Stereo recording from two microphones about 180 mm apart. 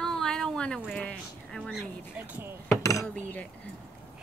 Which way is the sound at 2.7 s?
15° left (ahead or behind).